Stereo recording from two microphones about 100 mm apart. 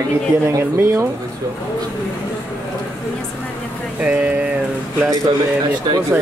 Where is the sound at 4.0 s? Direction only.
15° right (ahead or behind).